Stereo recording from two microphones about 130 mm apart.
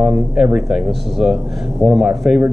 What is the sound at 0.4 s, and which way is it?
Speech, 5° right (ahead or behind).